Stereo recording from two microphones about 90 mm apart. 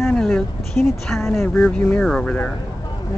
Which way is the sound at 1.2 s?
20° left (ahead or behind).